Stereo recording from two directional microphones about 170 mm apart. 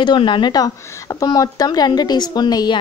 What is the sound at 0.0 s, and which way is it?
A woman's voice, 30° left (ahead or behind).